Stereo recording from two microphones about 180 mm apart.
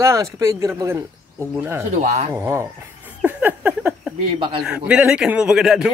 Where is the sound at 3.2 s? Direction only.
10° right (ahead or behind).